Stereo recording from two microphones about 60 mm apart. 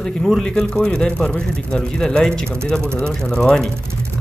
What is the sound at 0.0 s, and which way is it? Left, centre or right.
Speech, centre.